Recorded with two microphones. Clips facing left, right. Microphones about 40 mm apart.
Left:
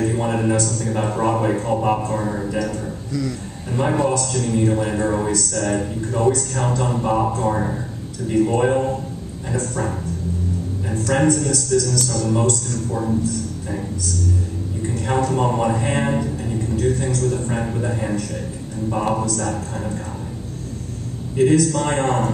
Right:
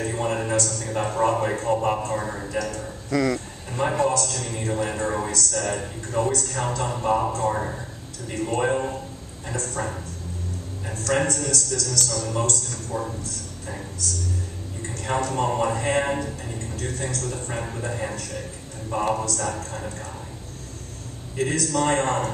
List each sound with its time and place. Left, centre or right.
0.0 s a man's voice: centre
3.1 s speech: right
3.7 s a man's voice: centre
15.0 s a man's voice: centre
21.4 s a man's voice: centre